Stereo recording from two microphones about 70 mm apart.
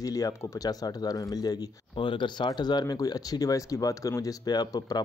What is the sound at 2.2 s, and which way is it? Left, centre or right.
Speech, left.